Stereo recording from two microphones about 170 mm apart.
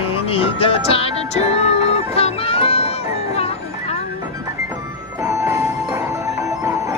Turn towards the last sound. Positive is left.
turn(degrees=-15)  # may be behind; listen again after turning